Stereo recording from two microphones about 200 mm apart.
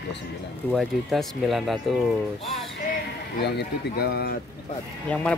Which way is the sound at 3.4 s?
55° left (ahead or behind).